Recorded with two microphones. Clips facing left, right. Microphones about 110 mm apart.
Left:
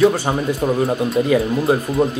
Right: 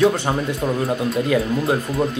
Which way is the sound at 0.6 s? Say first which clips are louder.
Left 3 dB; 20° left (ahead or behind).